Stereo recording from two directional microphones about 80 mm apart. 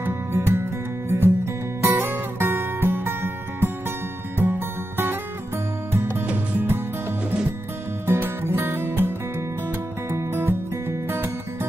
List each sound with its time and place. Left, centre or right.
0.0 s music: right
8.1 s music: right